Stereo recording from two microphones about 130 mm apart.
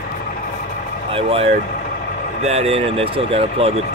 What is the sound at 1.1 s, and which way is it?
Speech, 50° right (ahead or behind).